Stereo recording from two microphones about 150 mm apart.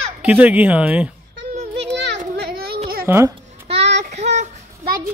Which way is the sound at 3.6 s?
45° right (ahead or behind).